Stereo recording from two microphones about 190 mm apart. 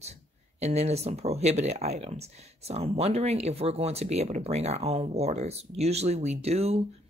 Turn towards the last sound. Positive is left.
turn(degrees=-35)  # may be behind; listen again after turning